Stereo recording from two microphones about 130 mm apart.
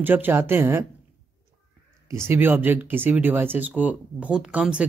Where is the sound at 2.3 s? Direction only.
15° right (ahead or behind).